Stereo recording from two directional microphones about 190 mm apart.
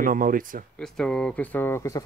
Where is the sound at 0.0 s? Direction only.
45° right (ahead or behind).